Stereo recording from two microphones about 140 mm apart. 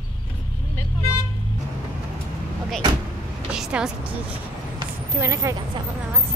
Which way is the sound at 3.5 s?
5° right (ahead or behind).